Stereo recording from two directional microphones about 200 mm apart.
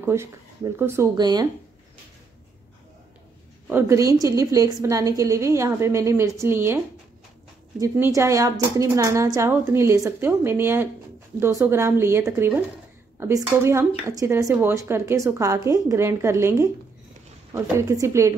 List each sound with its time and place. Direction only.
0.0 s a woman's voice: 15° right (ahead or behind)
3.6 s a woman's voice: 10° right (ahead or behind)
7.8 s a woman's voice: 15° right (ahead or behind)